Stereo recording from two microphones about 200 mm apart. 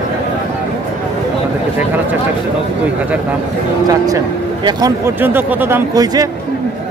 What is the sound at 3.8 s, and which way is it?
Speech, 20° right (ahead or behind).